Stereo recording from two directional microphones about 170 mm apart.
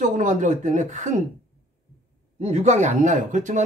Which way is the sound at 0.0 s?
45° right (ahead or behind).